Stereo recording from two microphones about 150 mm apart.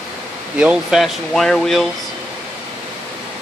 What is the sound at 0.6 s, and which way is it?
Speech, 5° right (ahead or behind).